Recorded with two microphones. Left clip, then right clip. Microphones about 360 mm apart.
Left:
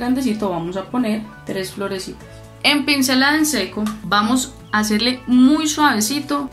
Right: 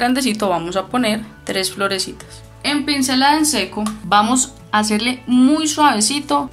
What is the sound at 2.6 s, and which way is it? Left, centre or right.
Speech, centre.